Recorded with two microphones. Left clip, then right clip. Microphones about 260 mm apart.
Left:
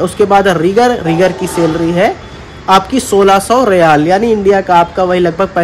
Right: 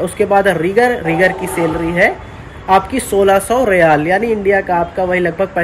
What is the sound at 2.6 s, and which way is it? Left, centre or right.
Speech, centre.